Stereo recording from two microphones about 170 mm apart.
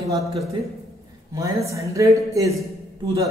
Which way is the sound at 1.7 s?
20° right (ahead or behind).